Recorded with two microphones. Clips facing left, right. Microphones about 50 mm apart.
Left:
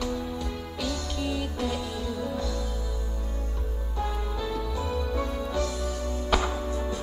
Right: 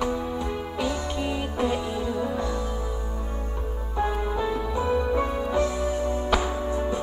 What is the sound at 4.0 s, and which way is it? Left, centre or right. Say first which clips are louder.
Music: right 6 dB; right.